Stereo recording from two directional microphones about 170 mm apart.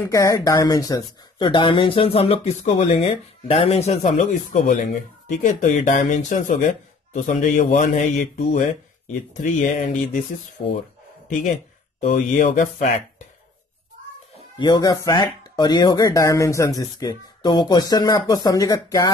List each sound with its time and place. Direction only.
0.0 s speech: 20° left (ahead or behind); by 9.8 s 45° left (ahead or behind)
10.6 s speech: 60° left (ahead or behind)
12.0 s speech: 45° left (ahead or behind)
14.6 s speech: 25° left (ahead or behind)